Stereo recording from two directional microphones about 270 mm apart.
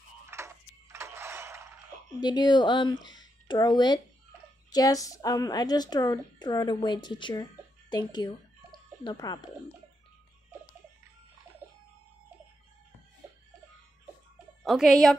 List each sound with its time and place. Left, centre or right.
0.3 s a sound: centre
2.1 s a woman's voice: centre
11.6 s music: centre
14.6 s speech: centre